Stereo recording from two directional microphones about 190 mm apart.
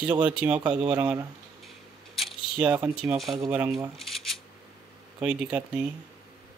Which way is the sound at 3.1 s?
Centre (ahead or behind).